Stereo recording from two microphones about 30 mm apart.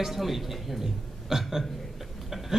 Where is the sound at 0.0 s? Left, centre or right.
Centre.